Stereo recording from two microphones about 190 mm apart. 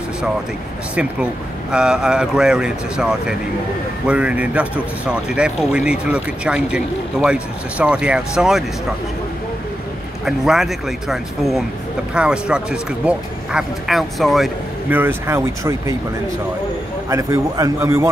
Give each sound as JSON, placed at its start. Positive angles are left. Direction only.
{"t": 0.9, "sound": "a man's voice", "side_deg": -5}
{"t": 10.2, "sound": "a man's voice", "side_deg": 0}
{"t": 17.1, "sound": "a man's voice", "side_deg": -15}